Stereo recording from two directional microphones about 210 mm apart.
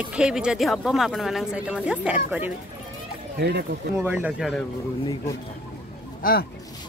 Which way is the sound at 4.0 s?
10° right (ahead or behind).